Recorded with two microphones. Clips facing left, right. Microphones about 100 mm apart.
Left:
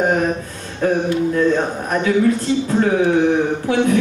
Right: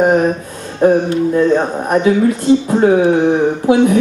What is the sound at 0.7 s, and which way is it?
Speech, 30° right (ahead or behind).